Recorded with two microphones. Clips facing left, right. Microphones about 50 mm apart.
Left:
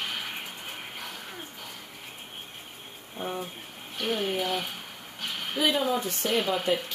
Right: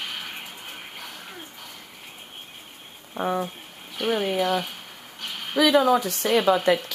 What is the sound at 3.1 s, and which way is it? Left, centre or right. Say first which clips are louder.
Speech: right 8 dB; right.